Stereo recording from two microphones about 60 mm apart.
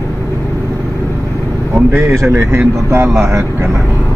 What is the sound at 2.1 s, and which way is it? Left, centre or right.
A man's voice, right.